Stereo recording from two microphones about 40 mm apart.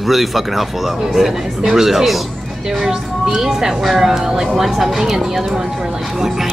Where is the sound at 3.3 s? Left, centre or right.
Centre.